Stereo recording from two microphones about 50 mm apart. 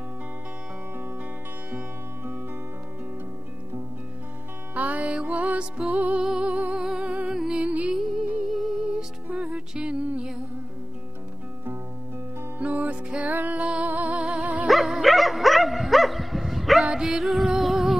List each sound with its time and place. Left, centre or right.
4.7 s music: right
6.1 s music: centre
6.4 s music: right
7.6 s music: right
8.4 s music: centre
8.8 s music: right
12.5 s music: right
14.2 s dog: centre
14.7 s dog: centre
16.9 s music: centre